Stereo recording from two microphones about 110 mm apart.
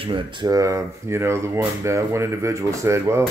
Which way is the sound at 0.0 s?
50° right (ahead or behind).